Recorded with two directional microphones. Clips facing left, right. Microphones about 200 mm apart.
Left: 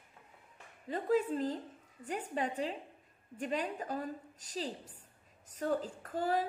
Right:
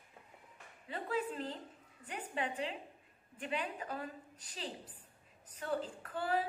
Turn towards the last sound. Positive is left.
turn(degrees=40)  # may be behind; listen again after turning